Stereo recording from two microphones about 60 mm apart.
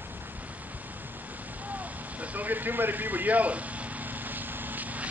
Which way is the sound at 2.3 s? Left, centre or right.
Right.